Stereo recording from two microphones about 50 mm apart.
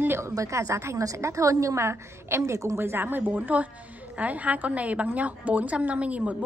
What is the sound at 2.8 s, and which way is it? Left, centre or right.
A woman's voice, right.